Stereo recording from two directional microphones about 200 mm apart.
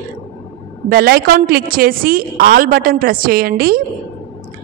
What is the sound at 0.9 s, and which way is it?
A woman's voice, 50° right (ahead or behind).